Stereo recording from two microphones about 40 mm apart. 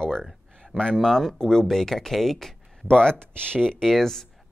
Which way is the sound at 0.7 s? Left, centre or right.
Centre.